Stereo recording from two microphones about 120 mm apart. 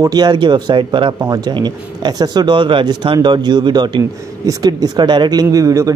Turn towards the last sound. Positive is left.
turn(degrees=-25)  # may be behind; listen again after turning